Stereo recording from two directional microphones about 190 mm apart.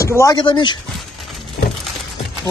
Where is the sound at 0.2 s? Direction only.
20° left (ahead or behind).